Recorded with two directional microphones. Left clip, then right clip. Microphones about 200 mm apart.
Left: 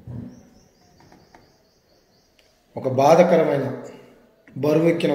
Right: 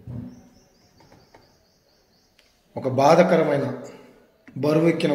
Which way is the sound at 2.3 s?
10° right (ahead or behind).